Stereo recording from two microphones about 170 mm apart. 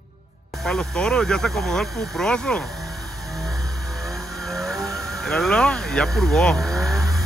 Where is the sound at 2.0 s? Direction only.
Centre (ahead or behind).